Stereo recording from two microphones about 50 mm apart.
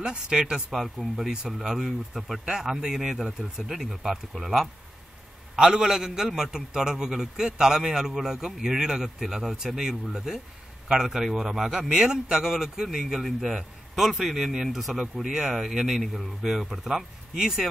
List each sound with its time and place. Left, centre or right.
0.0 s a man's voice: centre
0.7 s speech: centre
2.4 s a man's voice: centre